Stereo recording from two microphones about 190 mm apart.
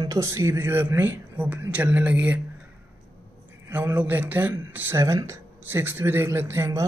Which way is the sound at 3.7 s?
10° right (ahead or behind).